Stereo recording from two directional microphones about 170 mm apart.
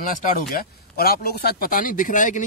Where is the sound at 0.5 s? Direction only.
60° left (ahead or behind).